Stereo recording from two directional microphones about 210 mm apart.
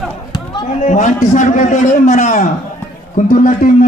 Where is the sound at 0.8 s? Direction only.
35° left (ahead or behind).